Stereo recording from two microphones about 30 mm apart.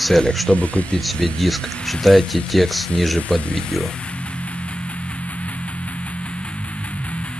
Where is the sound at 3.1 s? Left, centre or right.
Left.